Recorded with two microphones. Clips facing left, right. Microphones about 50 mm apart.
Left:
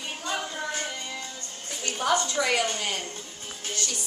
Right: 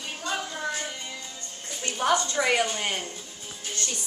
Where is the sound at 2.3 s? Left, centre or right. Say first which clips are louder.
Right 1 dB; right.